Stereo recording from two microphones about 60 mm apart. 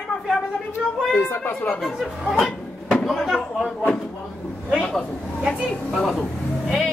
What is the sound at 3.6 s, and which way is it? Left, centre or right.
A woman's voice, centre.